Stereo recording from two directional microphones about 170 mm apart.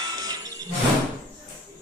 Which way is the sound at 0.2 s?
20° right (ahead or behind).